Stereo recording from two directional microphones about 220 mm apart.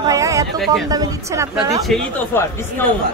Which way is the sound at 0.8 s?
15° right (ahead or behind).